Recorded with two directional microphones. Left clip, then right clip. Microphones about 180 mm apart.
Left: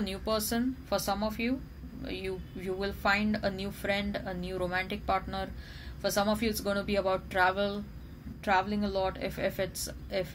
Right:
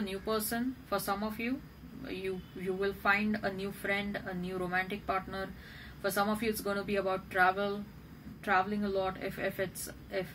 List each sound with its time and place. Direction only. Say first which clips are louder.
0.0 s a woman's voice: left 3 dB; 35° left (ahead or behind)